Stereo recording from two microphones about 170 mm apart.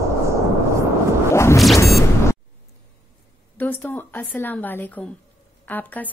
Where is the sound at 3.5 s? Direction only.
10° left (ahead or behind).